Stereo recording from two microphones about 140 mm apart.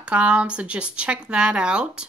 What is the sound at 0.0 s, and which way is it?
Speech, 10° right (ahead or behind).